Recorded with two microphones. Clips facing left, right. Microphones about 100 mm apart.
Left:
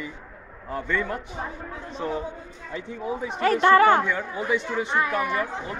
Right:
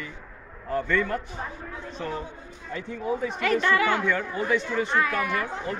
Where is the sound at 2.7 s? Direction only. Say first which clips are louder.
Right 1 dB; 15° left (ahead or behind).